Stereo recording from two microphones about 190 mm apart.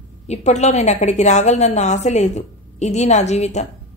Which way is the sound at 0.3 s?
35° left (ahead or behind).